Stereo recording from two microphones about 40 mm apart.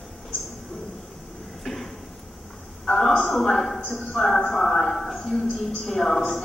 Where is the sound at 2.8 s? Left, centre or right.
Centre.